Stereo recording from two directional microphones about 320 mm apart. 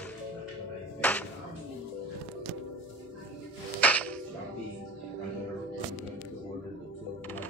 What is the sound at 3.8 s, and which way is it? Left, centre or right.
Music, centre.